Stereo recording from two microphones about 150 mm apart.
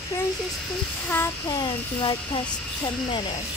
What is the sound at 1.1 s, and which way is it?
Speech, 15° left (ahead or behind).